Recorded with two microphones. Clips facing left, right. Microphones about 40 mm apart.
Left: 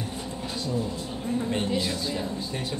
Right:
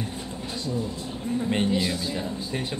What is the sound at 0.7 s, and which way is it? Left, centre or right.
Speech, centre.